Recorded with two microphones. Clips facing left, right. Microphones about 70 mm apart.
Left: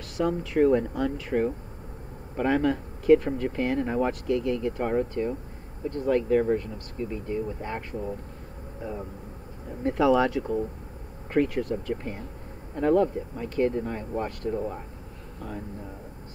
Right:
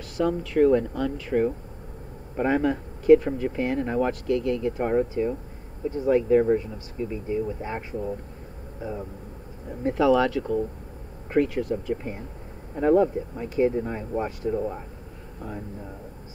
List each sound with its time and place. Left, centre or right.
0.2 s speech: centre
2.3 s speech: centre
9.8 s speech: centre